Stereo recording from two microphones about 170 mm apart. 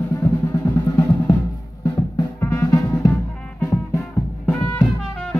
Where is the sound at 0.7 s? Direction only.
20° left (ahead or behind).